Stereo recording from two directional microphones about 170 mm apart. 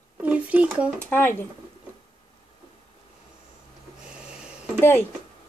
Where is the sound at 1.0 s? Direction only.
10° left (ahead or behind).